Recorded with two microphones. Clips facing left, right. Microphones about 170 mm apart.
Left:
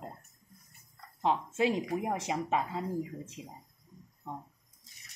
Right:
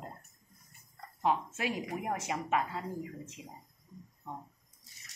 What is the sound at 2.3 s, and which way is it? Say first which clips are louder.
Speech: even; 25° left (ahead or behind).